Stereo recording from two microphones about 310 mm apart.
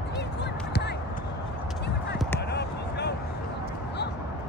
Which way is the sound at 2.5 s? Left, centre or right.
Left.